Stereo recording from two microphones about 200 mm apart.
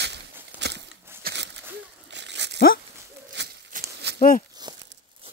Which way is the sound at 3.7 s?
40° right (ahead or behind).